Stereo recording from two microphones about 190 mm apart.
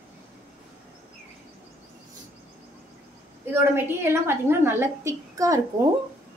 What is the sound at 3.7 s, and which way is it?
A woman's voice, 10° right (ahead or behind).